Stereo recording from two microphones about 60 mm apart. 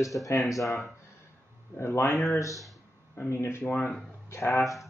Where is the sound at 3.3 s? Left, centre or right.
Left.